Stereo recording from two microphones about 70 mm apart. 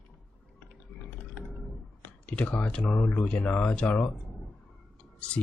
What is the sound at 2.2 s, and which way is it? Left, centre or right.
Speech, centre.